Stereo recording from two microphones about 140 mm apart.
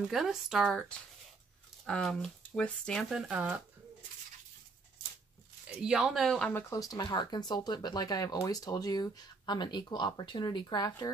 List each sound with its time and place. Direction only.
0.1 s speech: centre (ahead or behind)
3.1 s speech: 5° right (ahead or behind)
5.8 s speech: 5° right (ahead or behind)
6.5 s speech: 25° left (ahead or behind)